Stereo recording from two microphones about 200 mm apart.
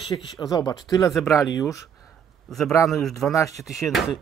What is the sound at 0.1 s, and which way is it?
Speech, 20° left (ahead or behind).